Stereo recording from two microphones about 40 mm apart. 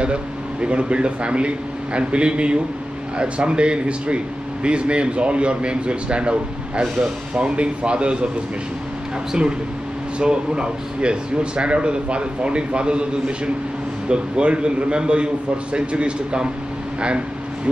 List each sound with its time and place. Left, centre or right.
0.0 s a man's voice: right
10.1 s speech: right
14.0 s speech: right